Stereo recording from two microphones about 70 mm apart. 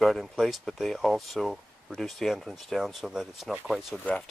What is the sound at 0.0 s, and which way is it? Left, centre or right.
Speech, centre.